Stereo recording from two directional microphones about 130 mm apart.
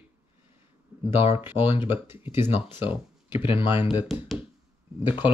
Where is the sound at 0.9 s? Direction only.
15° right (ahead or behind).